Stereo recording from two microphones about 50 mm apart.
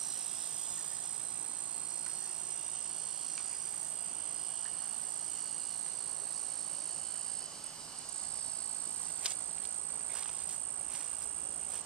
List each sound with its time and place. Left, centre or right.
9.2 s cricket: right